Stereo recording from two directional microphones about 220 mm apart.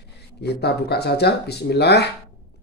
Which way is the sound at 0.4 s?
50° left (ahead or behind).